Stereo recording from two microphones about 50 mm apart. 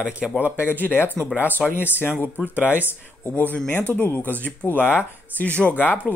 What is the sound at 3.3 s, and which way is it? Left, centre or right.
Speech, left.